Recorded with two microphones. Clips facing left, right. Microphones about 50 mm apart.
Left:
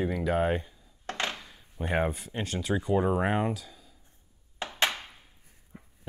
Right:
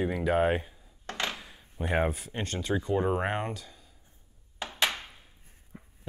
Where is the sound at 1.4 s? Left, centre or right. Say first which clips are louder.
Even; centre.